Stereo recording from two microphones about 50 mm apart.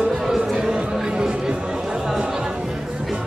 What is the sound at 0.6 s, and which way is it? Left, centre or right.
Music, centre.